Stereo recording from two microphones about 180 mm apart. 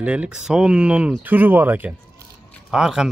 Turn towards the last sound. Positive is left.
turn(degrees=-5)  # may be behind; listen again after turning